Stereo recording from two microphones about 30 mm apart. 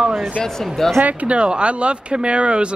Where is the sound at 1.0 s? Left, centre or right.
Right.